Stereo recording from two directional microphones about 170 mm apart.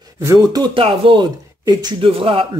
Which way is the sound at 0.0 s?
20° right (ahead or behind).